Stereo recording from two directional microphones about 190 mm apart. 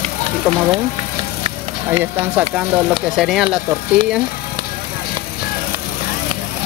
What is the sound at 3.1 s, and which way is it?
Speech, centre (ahead or behind).